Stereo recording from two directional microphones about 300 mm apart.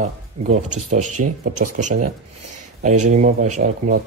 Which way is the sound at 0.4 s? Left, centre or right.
Right.